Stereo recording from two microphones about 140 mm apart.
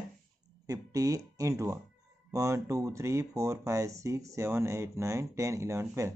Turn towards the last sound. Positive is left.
turn(degrees=-20)  # may be behind; listen again after turning